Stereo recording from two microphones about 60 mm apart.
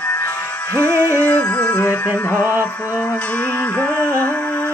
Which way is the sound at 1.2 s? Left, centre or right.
Left.